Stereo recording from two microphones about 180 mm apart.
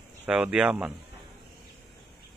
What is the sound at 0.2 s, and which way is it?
Speech, 5° right (ahead or behind).